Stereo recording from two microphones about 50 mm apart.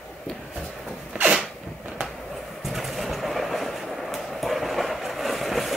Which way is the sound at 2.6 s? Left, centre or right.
Centre.